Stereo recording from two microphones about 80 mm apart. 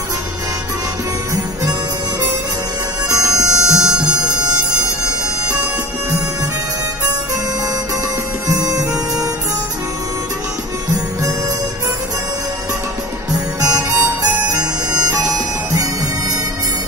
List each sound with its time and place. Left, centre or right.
1.3 s music: right
3.1 s music: right
8.5 s music: right
13.3 s music: right